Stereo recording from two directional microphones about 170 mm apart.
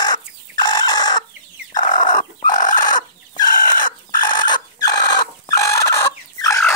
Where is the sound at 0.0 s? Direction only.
25° left (ahead or behind).